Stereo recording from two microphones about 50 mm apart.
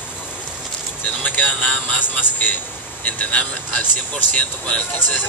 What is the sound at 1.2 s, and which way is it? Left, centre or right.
Speech, left.